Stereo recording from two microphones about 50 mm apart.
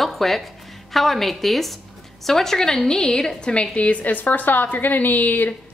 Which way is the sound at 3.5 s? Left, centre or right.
Left.